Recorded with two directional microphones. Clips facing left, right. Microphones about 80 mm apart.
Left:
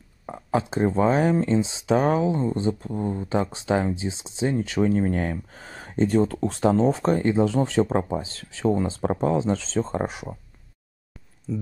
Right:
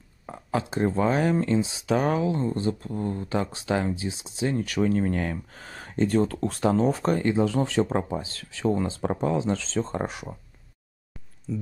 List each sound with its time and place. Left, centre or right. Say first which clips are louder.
0.3 s a sound: left 3 dB; left
0.9 s speech: left 3 dB; left
11.5 s speech: left 2 dB; centre